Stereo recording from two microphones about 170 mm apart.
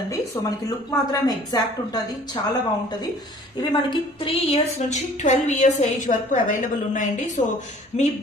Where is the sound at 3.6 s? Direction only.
25° left (ahead or behind); by 8.0 s 45° left (ahead or behind).